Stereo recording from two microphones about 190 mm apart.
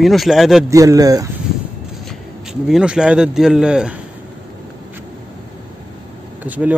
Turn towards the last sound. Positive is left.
turn(degrees=-10)  # may be behind; listen again after turning